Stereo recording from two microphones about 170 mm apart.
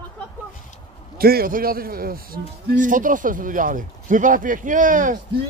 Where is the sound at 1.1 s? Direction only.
65° right (ahead or behind).